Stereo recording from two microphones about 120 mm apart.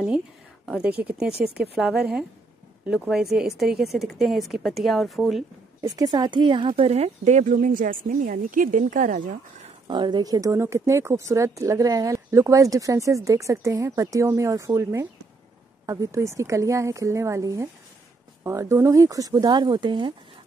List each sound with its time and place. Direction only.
0.8 s speech: 10° right (ahead or behind)
5.8 s speech: 30° right (ahead or behind)
6.8 s speech: 60° right (ahead or behind); by 9.7 s 90° right
9.8 s speech: 40° right (ahead or behind)
10.5 s speech: 25° right (ahead or behind); by 20.2 s 40° right (ahead or behind)